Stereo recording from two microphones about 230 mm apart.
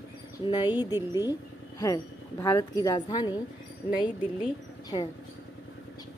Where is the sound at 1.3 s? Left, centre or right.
Centre.